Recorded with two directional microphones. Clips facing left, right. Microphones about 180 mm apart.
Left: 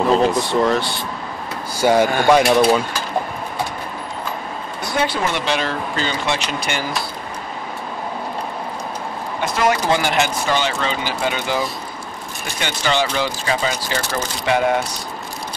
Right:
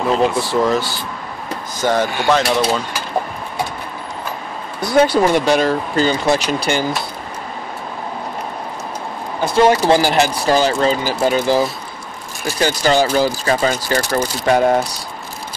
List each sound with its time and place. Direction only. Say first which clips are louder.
0.4 s speech: right 1 dB; centre (ahead or behind)
1.8 s speech: left 3 dB; 10° left (ahead or behind)
4.8 s speech: right 8 dB; 40° right (ahead or behind)
9.4 s speech: right 6 dB; 30° right (ahead or behind)